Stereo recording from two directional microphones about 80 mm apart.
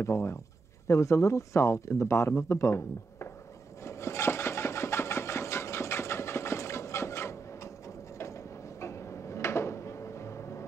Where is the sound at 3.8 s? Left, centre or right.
Left.